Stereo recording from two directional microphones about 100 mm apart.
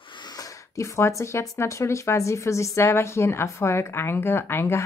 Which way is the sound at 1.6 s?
30° left (ahead or behind).